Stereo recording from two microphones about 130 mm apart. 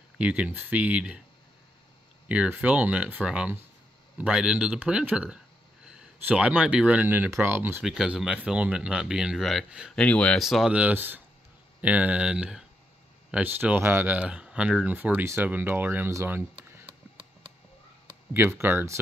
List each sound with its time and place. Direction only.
0.2 s speech: 10° right (ahead or behind)
2.2 s speech: 10° right (ahead or behind)
7.8 s speech: centre (ahead or behind)
9.9 s speech: 10° left (ahead or behind)
10.4 s speech: centre (ahead or behind); by 16.8 s 20° right (ahead or behind)
18.3 s speech: 15° right (ahead or behind)